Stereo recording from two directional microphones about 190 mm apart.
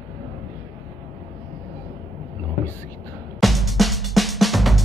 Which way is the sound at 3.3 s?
Centre (ahead or behind).